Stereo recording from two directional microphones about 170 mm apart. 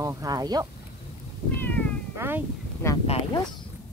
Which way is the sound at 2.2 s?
10° right (ahead or behind).